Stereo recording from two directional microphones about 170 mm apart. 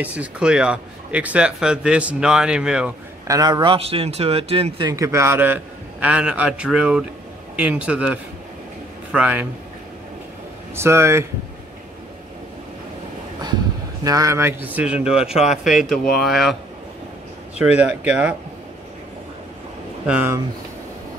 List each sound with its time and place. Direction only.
0.0 s a man's voice: 10° right (ahead or behind)
3.3 s a man's voice: 20° right (ahead or behind)
4.9 s a man's voice: 15° right (ahead or behind)
10.8 s a man's voice: 15° right (ahead or behind)
14.0 s a man's voice: 20° right (ahead or behind); by 16.5 s centre (ahead or behind)
17.6 s a man's voice: 5° right (ahead or behind)
20.1 s a man's voice: 10° right (ahead or behind)